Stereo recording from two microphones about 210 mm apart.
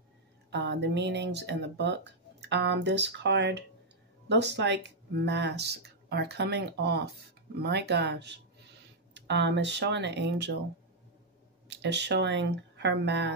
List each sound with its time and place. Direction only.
0.5 s speech: 55° right (ahead or behind)
11.7 s speech: 55° right (ahead or behind)